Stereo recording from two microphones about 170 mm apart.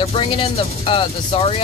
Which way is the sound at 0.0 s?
35° left (ahead or behind).